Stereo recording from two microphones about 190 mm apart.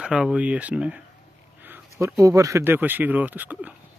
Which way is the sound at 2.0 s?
15° right (ahead or behind).